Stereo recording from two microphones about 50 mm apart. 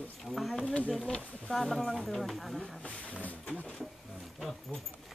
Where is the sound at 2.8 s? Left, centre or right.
Left.